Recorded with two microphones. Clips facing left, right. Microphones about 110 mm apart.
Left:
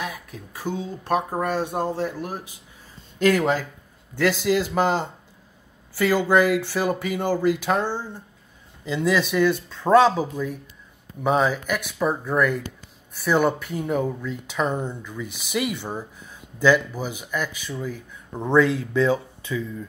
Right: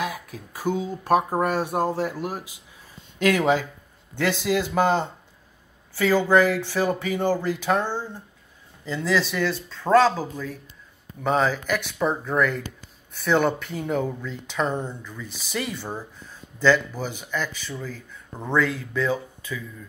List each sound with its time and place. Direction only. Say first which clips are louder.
0.0 s a sound: right 3 dB; 30° right (ahead or behind)
1.0 s speech: right 3 dB; 10° right (ahead or behind)
3.3 s speech: right 1 dB; centre (ahead or behind)
14.9 s speech: left 3 dB; centre (ahead or behind)
15.5 s speech: left 3 dB; 10° left (ahead or behind)